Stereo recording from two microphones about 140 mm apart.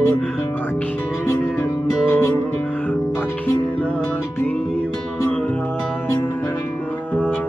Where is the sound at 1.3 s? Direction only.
15° left (ahead or behind).